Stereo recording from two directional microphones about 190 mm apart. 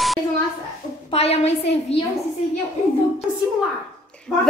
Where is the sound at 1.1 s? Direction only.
35° left (ahead or behind).